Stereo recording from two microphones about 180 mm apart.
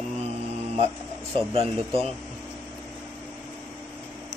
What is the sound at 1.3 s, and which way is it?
Speech, 30° right (ahead or behind).